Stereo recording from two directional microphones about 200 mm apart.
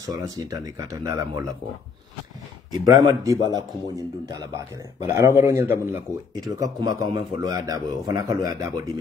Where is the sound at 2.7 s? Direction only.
20° right (ahead or behind).